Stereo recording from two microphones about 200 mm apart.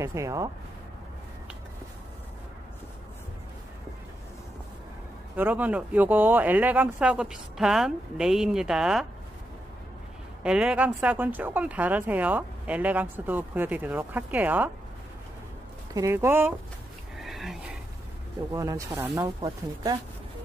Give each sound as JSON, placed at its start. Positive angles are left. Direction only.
{"t": 0.0, "sound": "speech", "side_deg": -15}
{"t": 5.3, "sound": "speech", "side_deg": -5}
{"t": 10.4, "sound": "speech", "side_deg": -5}
{"t": 15.9, "sound": "speech", "side_deg": -15}
{"t": 17.2, "sound": "a sound", "side_deg": 0}
{"t": 18.5, "sound": "speech", "side_deg": -15}